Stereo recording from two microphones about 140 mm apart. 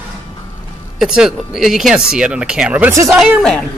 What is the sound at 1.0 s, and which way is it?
Speech, 5° right (ahead or behind).